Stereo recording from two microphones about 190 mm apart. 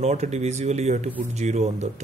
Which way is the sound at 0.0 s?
35° right (ahead or behind).